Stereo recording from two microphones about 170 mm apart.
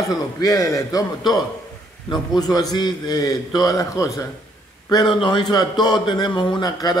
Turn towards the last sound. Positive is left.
turn(degrees=25)  # may be behind; listen again after turning